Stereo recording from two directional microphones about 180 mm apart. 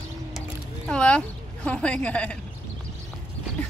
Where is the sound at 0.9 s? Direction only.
5° left (ahead or behind).